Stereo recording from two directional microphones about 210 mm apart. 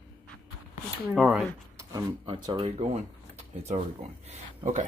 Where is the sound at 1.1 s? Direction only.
5° right (ahead or behind).